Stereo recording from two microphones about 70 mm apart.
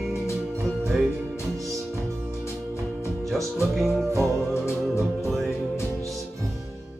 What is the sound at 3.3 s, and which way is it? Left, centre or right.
Mantra, centre.